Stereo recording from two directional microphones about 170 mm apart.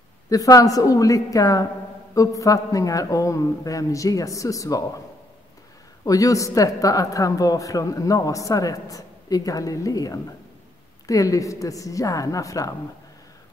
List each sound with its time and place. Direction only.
0.3 s speech: 20° left (ahead or behind)
6.0 s speech: 20° left (ahead or behind)